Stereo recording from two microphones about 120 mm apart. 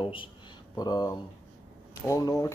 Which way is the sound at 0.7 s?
35° left (ahead or behind).